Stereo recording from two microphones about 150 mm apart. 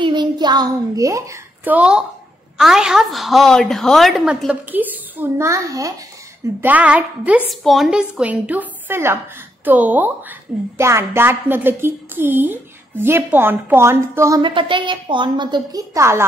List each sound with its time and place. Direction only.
0.0 s a child's voice: 30° right (ahead or behind)
6.6 s a woman's voice: 10° right (ahead or behind)
14.4 s a woman's voice: 35° right (ahead or behind); by 16.3 s 20° right (ahead or behind)